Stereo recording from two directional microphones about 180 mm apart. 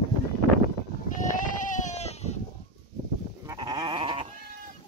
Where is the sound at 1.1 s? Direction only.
45° left (ahead or behind).